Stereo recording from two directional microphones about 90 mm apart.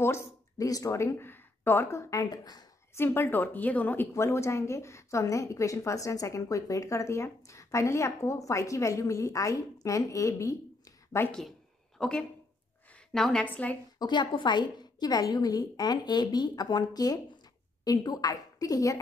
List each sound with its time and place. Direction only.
0.0 s speech: 30° left (ahead or behind)
0.7 s a woman's voice: 40° left (ahead or behind)
3.0 s speech: 25° left (ahead or behind)
4.1 s a woman's voice: 30° left (ahead or behind)
12.0 s a woman's voice: 5° left (ahead or behind)
13.9 s a woman's voice: 55° left (ahead or behind); by 18.9 s 40° left (ahead or behind)